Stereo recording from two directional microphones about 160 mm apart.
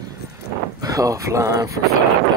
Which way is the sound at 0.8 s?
20° right (ahead or behind).